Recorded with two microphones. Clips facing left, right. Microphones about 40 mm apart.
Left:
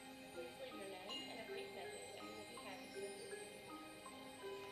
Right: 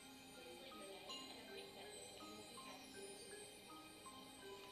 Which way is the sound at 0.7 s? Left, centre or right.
Left.